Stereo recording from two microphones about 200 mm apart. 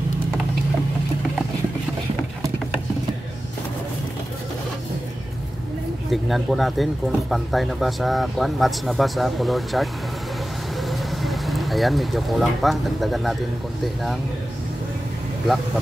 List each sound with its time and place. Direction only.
6.0 s speech: centre (ahead or behind)